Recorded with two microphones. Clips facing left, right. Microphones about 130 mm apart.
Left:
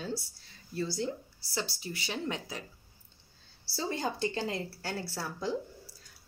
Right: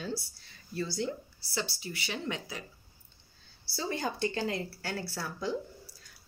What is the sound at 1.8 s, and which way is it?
Speech, 35° left (ahead or behind).